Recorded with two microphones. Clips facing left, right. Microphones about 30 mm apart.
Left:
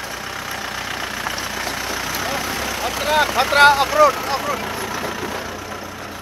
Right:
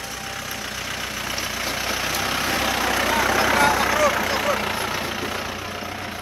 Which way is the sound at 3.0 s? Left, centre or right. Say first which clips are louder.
Left 5 dB; left.